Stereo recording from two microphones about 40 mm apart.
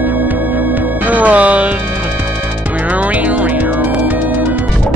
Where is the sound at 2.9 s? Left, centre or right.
Right.